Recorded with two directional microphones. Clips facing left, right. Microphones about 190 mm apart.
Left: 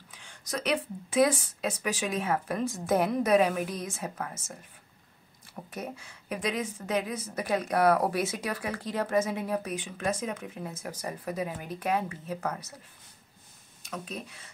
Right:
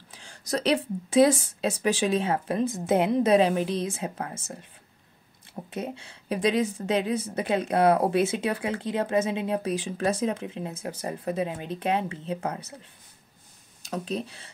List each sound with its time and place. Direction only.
0.1 s speech: 35° right (ahead or behind)
13.8 s speech: 35° right (ahead or behind)